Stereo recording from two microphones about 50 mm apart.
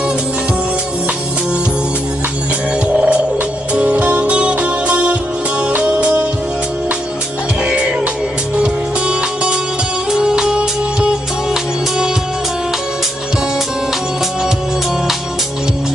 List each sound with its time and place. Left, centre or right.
2.9 s music: right
8.5 s music: centre